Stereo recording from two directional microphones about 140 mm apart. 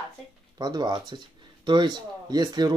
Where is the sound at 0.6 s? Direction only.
30° right (ahead or behind).